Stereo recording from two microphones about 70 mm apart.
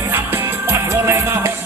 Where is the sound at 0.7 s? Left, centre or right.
Right.